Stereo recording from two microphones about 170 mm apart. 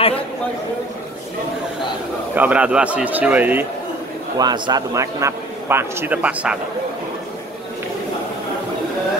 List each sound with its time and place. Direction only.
2.3 s a man's voice: 10° right (ahead or behind)
4.4 s a man's voice: 25° right (ahead or behind); by 6.6 s 5° right (ahead or behind)